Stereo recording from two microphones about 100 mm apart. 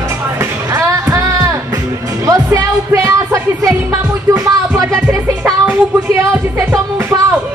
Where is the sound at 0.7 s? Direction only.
30° right (ahead or behind).